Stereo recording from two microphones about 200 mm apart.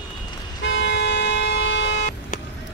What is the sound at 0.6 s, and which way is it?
Toot, 60° left (ahead or behind).